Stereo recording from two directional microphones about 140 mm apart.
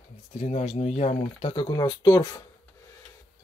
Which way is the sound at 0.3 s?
55° left (ahead or behind).